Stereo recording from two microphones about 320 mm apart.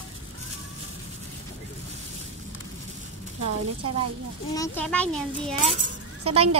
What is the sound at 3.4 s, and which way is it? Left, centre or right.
Speech, right.